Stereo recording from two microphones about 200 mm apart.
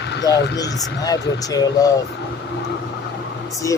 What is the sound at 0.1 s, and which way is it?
Speech, 60° left (ahead or behind).